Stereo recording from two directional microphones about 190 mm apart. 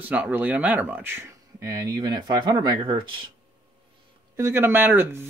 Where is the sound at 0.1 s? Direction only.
10° right (ahead or behind); by 3.1 s 25° right (ahead or behind).